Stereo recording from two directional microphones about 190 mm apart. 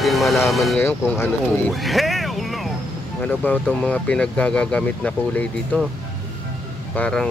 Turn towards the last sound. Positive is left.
turn(degrees=5)  # may be behind; listen again after turning